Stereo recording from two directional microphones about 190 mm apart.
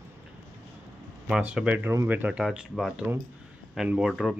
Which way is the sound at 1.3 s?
5° right (ahead or behind).